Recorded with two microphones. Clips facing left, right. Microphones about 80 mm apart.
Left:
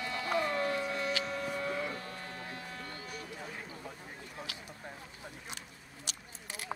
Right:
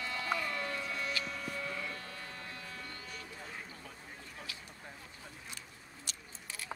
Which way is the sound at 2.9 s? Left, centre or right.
Centre.